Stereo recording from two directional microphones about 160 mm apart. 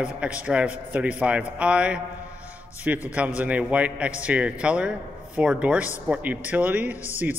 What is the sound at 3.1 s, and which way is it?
A man's voice, 10° right (ahead or behind).